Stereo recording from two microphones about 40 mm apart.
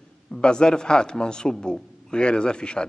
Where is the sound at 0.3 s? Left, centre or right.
Left.